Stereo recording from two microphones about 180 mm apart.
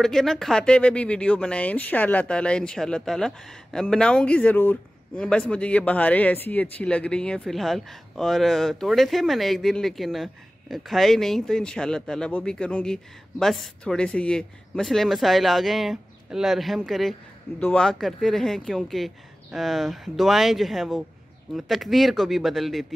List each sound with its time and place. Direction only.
0.0 s speech: centre (ahead or behind)